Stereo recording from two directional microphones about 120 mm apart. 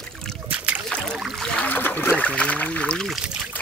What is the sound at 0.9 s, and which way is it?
Boat, 10° left (ahead or behind).